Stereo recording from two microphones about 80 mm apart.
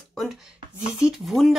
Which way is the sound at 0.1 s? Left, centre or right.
Centre.